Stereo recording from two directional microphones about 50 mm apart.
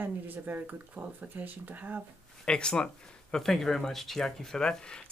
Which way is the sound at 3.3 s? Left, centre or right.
Centre.